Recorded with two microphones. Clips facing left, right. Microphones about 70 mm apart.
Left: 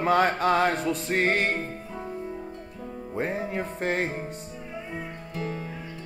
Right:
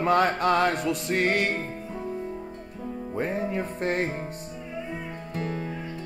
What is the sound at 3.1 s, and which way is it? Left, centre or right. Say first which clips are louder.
Music: right 1 dB; centre.